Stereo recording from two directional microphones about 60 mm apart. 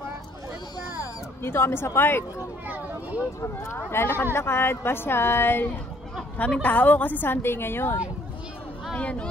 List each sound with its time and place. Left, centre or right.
1.4 s a woman's voice: left
3.3 s speech: left
3.7 s a woman's voice: left
6.3 s a woman's voice: left
8.9 s a sound: left